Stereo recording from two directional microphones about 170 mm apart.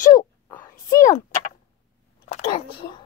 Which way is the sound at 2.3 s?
35° left (ahead or behind).